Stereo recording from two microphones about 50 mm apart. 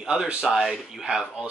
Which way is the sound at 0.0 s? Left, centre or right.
Centre.